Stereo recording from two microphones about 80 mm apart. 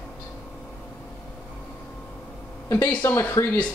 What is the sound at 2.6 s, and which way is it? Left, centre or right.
Speech, left.